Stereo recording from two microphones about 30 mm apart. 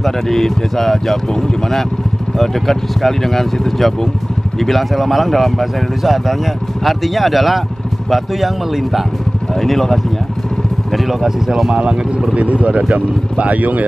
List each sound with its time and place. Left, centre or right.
0.0 s speech: centre
9.6 s speech: centre
10.9 s vehicle: centre
11.2 s speech: centre
11.7 s speech: right
12.4 s speech: right